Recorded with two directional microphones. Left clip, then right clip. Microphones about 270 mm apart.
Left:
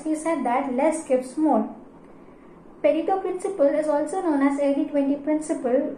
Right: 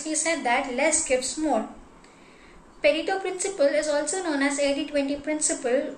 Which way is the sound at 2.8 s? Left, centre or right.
Right.